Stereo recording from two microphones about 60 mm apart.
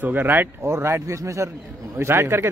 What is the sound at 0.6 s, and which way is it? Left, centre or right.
Speech, right.